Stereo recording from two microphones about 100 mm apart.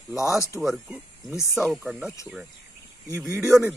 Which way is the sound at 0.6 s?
10° right (ahead or behind).